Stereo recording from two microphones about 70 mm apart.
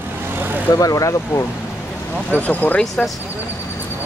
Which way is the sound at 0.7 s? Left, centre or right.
Left.